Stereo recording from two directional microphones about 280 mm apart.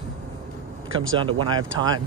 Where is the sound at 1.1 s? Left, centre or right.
Centre.